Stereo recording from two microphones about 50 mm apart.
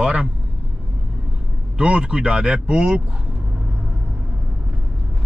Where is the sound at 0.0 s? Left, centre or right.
Centre.